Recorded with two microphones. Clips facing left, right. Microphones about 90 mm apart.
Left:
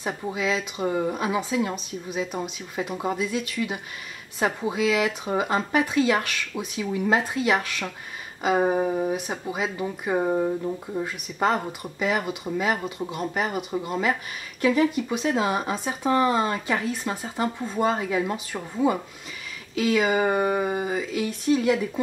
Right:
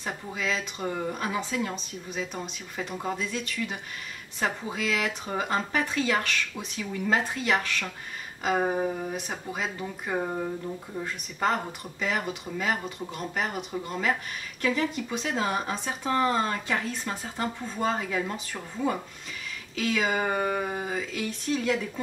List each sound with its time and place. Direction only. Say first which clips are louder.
0.3 s speech: left 4 dB; 5° left (ahead or behind)
8.7 s speech: left 5 dB; 15° left (ahead or behind)
9.1 s speech: left 5 dB; 5° left (ahead or behind)
11.4 s speech: left 3 dB; 5° left (ahead or behind)